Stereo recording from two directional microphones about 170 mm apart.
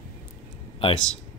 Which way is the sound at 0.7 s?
30° left (ahead or behind).